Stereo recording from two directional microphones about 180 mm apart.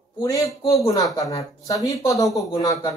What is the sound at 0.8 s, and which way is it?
A woman's voice, 20° left (ahead or behind).